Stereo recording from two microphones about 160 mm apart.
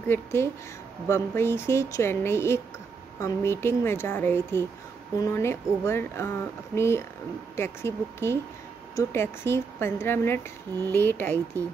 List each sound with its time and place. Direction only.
0.1 s speech: 15° left (ahead or behind)